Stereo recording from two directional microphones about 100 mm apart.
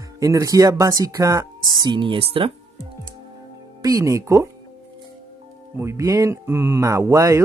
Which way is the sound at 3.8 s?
35° right (ahead or behind).